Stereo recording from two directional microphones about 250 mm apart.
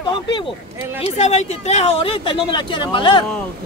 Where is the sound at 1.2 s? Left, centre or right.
Left.